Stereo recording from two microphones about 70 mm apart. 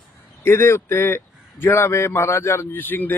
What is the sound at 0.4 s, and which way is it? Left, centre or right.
A man's voice, left.